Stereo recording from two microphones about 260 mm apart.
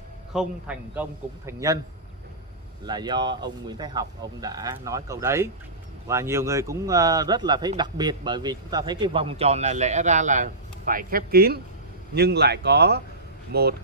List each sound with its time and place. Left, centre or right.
0.3 s speech: centre
2.9 s speech: centre; by 13.7 s right